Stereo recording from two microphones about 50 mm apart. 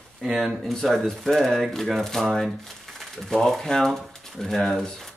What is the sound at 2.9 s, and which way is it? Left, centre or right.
Speech, centre.